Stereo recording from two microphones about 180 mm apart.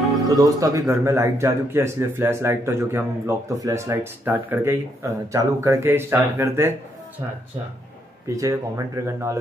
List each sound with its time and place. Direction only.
0.4 s speech: 20° right (ahead or behind)
8.4 s speech: 20° right (ahead or behind)